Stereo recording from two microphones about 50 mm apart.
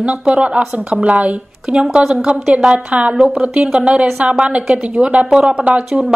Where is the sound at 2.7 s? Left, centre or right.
Right.